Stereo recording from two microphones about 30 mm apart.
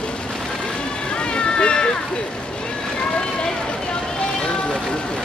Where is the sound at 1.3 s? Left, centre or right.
Left.